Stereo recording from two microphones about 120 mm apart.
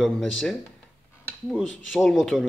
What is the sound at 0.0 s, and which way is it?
Speech, centre (ahead or behind).